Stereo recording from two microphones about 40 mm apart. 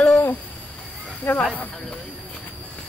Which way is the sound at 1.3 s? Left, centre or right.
Left.